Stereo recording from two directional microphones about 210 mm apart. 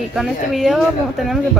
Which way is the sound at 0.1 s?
Centre (ahead or behind).